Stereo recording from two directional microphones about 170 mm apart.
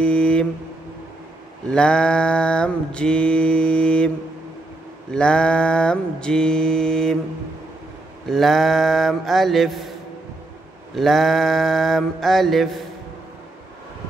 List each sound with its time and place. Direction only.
0.0 s a sound: 5° left (ahead or behind)
1.7 s mantra: 5° left (ahead or behind)
5.1 s mantra: 5° left (ahead or behind)
8.3 s mantra: centre (ahead or behind)
11.0 s mantra: centre (ahead or behind)